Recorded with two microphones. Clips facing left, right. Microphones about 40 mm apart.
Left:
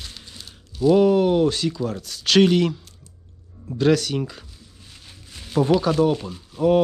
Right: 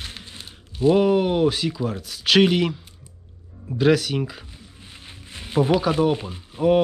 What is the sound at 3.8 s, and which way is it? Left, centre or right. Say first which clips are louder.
Speech: even; centre.